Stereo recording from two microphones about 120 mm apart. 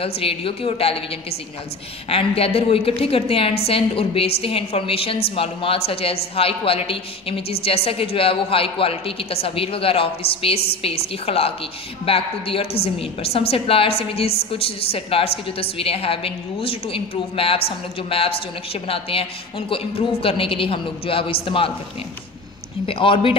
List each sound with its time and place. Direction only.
0.0 s a woman's voice: 50° left (ahead or behind)
2.0 s a woman's voice: 55° left (ahead or behind)
22.8 s a woman's voice: 45° left (ahead or behind)